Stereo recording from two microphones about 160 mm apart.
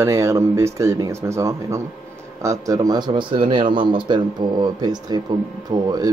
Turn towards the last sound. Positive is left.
turn(degrees=-25)  # may be behind; listen again after turning